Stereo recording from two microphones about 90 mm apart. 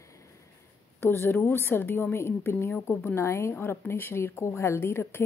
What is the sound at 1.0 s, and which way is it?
A woman's voice, 25° left (ahead or behind).